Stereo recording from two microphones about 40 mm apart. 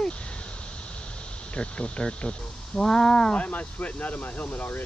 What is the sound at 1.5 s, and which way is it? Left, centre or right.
Speech, left.